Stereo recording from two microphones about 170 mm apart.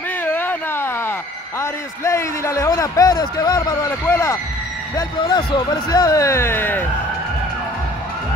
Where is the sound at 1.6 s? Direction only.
15° left (ahead or behind).